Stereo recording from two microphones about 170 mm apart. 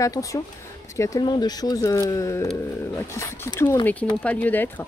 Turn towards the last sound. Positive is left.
turn(degrees=10)  # may be behind; listen again after turning